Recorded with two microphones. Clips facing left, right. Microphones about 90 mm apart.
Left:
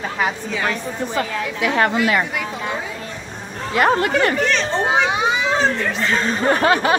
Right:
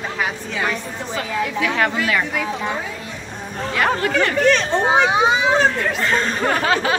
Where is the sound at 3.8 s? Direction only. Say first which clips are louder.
Left 3 dB; 35° left (ahead or behind).